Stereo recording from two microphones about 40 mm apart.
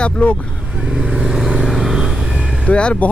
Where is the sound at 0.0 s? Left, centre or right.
Left.